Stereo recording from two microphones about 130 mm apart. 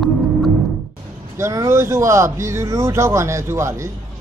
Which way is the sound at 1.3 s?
20° right (ahead or behind).